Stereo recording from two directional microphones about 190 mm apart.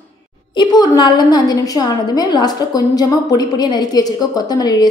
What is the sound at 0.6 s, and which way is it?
A woman's voice, 25° left (ahead or behind).